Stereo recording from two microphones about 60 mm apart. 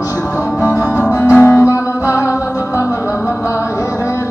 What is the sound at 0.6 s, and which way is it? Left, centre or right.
Music, left.